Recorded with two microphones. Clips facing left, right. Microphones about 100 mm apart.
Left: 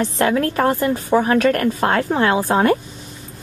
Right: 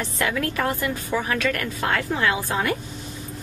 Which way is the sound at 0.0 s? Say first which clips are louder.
Left 7 dB; 40° left (ahead or behind).